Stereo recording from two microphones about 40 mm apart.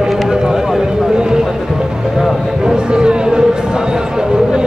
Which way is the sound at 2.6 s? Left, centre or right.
Right.